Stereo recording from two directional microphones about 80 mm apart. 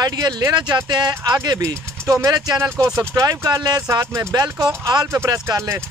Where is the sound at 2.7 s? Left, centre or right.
Right.